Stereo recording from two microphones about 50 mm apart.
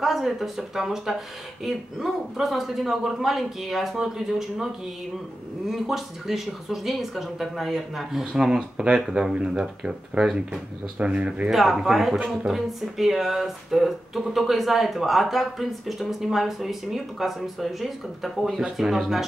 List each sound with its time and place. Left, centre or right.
0.0 s speech: centre
5.7 s speech: centre; by 11.5 s right
11.5 s speech: centre